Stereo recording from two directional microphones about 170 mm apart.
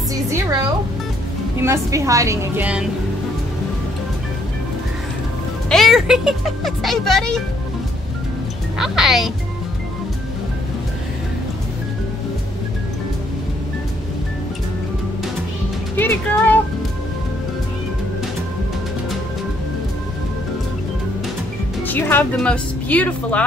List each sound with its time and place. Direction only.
0.1 s music: 20° right (ahead or behind)
1.6 s a woman's voice: 15° right (ahead or behind)
5.7 s speech: centre (ahead or behind)
8.7 s speech: centre (ahead or behind)
16.0 s speech: 10° left (ahead or behind)
21.8 s speech: 10° left (ahead or behind)